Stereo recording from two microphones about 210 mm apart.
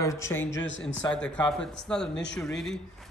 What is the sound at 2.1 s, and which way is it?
Speech, 55° left (ahead or behind).